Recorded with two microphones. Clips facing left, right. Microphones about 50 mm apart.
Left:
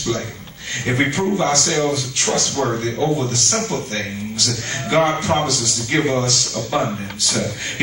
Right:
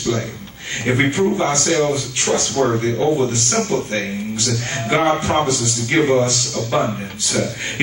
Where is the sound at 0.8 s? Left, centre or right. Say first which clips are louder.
Right 2 dB; right.